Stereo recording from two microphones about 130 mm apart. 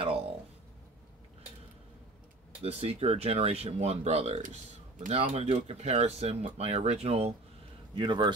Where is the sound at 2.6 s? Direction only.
50° right (ahead or behind).